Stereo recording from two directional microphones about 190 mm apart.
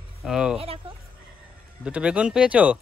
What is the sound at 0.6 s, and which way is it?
Speech, 30° right (ahead or behind).